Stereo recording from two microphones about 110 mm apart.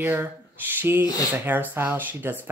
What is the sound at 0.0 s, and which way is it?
Speech, 20° right (ahead or behind).